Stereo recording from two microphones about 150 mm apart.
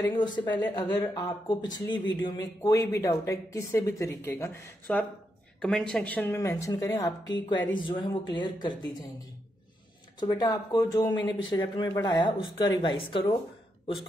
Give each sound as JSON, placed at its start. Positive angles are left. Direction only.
{"t": 0.0, "sound": "speech", "side_deg": 30}